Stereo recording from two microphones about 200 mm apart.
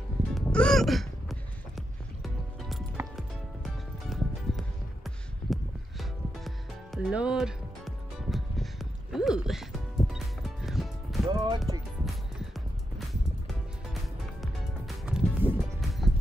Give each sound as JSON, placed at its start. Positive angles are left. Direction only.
{"t": 0.3, "sound": "music", "side_deg": 5}
{"t": 11.2, "sound": "music", "side_deg": -20}
{"t": 12.0, "sound": "music", "side_deg": 0}
{"t": 14.4, "sound": "music", "side_deg": 0}